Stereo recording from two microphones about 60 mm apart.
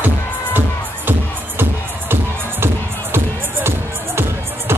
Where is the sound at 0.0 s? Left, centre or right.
Right.